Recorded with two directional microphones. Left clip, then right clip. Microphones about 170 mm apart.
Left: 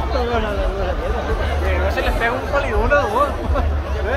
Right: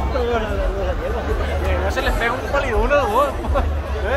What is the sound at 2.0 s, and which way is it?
Speech, 30° right (ahead or behind).